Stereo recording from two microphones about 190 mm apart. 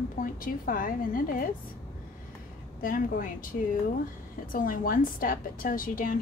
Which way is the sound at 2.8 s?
45° left (ahead or behind).